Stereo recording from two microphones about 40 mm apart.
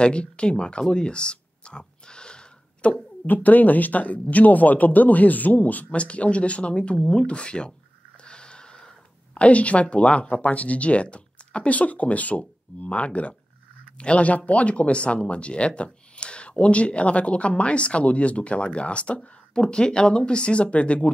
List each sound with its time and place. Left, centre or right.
0.0 s speech: left
0.8 s a sound: left
3.3 s speech: left